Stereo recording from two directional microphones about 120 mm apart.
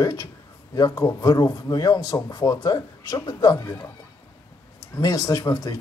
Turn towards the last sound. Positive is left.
turn(degrees=35)  # may be behind; listen again after turning